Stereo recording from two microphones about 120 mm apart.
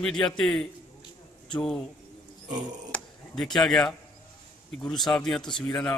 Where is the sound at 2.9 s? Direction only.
10° left (ahead or behind).